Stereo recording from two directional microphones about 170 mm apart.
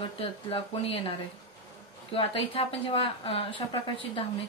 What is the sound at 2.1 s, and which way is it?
Speech, 30° left (ahead or behind).